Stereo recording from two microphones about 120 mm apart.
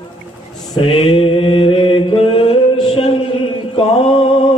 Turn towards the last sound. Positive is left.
turn(degrees=50)  # may be behind; listen again after turning